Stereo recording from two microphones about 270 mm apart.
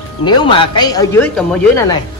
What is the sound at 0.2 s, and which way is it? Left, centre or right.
Speech, centre.